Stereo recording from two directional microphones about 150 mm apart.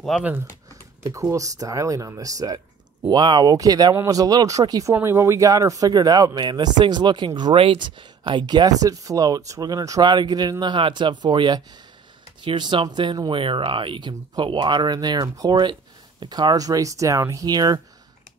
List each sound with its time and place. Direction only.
0.2 s speech: 10° right (ahead or behind)
1.3 s speech: 20° right (ahead or behind)